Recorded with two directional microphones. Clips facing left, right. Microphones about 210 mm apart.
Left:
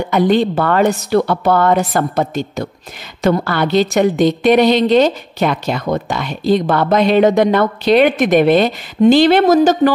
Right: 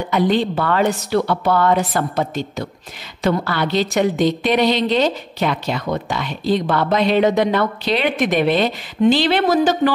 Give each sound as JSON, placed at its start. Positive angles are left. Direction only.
{"t": 0.1, "sound": "a woman's voice", "side_deg": 45}